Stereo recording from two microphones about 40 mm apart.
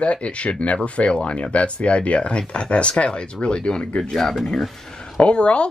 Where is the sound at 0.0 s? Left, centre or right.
Left.